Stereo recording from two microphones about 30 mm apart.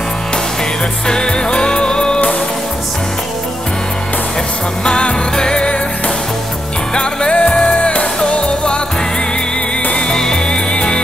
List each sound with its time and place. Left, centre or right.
1.0 s music: left
4.8 s music: left
7.0 s music: left
7.3 s music: left
10.1 s music: centre
10.5 s music: left